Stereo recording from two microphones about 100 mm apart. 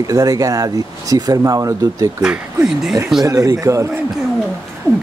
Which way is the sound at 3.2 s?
35° right (ahead or behind).